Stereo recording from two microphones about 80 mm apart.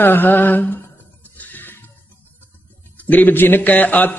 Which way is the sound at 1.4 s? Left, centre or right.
Left.